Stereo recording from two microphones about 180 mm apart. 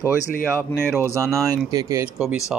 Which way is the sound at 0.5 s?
5° left (ahead or behind).